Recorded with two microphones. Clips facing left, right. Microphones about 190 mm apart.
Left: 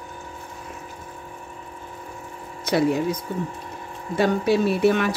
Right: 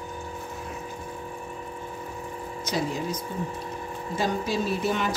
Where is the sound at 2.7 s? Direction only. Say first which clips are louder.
Left 9 dB; 60° left (ahead or behind).